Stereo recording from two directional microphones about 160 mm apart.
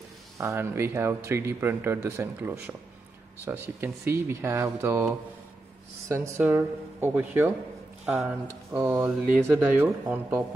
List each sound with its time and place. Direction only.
0.4 s speech: 15° right (ahead or behind)
8.7 s speech: 15° right (ahead or behind)